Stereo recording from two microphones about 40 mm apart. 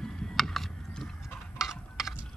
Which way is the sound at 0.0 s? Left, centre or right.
Centre.